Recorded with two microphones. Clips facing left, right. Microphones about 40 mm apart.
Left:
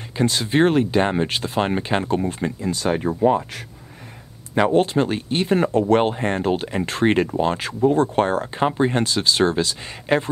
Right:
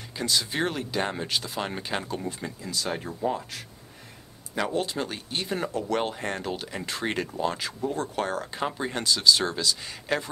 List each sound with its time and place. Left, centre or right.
0.1 s speech: left